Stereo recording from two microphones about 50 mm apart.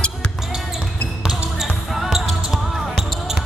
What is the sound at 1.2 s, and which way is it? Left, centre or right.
Basketball bounce, centre.